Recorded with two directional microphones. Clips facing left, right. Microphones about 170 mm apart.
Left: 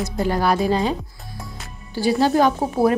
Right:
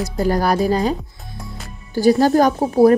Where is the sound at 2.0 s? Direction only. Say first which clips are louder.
Right 4 dB; 45° right (ahead or behind).